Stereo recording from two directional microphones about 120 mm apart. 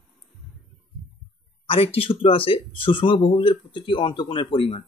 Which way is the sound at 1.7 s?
50° left (ahead or behind).